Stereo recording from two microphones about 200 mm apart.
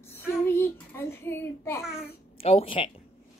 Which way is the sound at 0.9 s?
10° left (ahead or behind).